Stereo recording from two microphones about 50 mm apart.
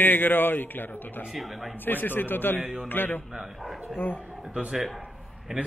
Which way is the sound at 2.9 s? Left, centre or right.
Left.